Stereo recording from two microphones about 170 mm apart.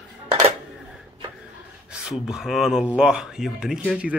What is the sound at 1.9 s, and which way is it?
Speech, 5° right (ahead or behind).